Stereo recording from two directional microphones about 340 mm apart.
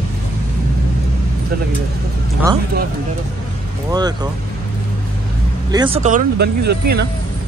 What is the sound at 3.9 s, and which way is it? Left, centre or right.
Speech, centre.